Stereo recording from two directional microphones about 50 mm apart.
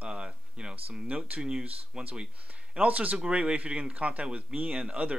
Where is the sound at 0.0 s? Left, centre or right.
Centre.